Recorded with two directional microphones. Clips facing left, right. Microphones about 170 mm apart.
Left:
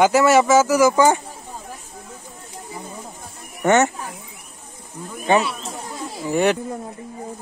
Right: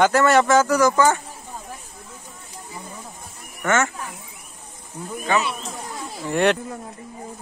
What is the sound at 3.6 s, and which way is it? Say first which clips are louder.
Speech: left 5 dB; 20° left (ahead or behind).